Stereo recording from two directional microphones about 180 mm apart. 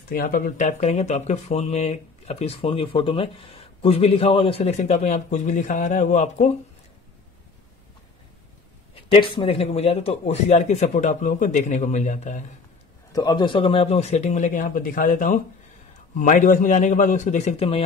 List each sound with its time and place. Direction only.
0.1 s speech: 50° left (ahead or behind)
8.9 s speech: 30° left (ahead or behind); by 12.4 s 45° left (ahead or behind)
13.1 s speech: 20° left (ahead or behind)